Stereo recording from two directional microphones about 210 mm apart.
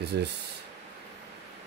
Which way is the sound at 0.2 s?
55° right (ahead or behind).